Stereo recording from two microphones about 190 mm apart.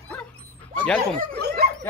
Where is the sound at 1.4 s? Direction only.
60° right (ahead or behind).